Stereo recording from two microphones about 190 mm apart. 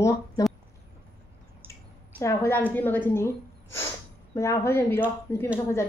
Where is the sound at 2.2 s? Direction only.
15° left (ahead or behind).